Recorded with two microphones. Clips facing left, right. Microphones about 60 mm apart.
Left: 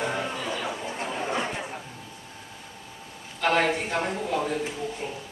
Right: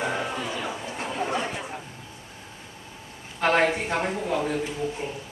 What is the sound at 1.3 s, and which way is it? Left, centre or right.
Chatter, centre.